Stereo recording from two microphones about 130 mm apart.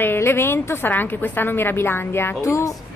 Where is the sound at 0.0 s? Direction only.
15° left (ahead or behind).